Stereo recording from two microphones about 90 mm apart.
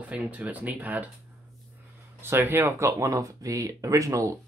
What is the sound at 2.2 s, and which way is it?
Speech, 25° right (ahead or behind).